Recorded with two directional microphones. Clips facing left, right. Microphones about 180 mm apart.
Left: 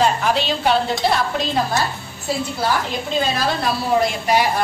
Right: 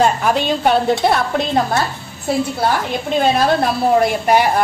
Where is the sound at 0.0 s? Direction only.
50° right (ahead or behind).